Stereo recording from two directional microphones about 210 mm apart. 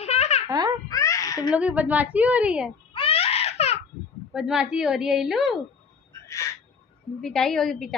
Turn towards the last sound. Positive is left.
turn(degrees=0)  # may be behind; listen again after turning